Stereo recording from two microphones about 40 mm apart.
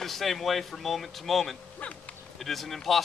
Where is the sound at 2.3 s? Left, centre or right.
Centre.